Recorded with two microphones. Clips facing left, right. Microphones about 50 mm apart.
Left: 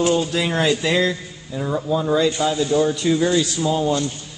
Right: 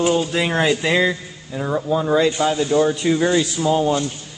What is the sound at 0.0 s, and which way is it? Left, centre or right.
Speech, centre.